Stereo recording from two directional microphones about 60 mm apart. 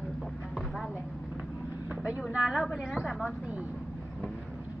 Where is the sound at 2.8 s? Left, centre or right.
Centre.